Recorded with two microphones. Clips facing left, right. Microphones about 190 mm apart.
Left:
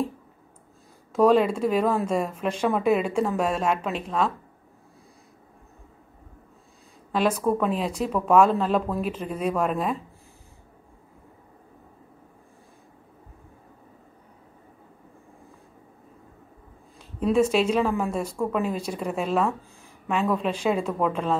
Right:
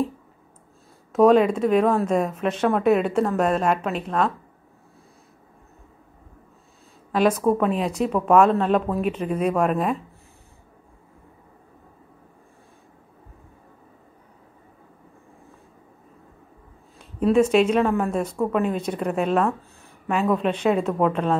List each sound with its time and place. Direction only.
1.1 s speech: 5° right (ahead or behind)
1.5 s speech: 5° left (ahead or behind)
7.1 s speech: 5° right (ahead or behind)
17.2 s speech: 5° right (ahead or behind)